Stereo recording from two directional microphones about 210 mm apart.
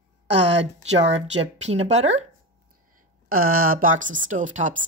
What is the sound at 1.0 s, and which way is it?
Speech, 30° right (ahead or behind).